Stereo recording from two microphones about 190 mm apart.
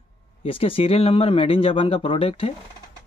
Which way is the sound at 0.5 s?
30° left (ahead or behind).